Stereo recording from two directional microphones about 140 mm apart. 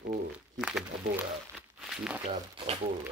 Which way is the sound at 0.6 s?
5° right (ahead or behind).